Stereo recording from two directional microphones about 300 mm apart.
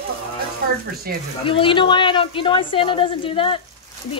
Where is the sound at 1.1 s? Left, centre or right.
Right.